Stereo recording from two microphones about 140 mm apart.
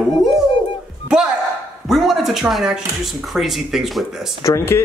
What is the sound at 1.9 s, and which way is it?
Speech, centre (ahead or behind).